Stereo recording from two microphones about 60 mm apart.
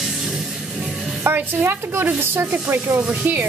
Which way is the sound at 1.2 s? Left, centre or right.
Right.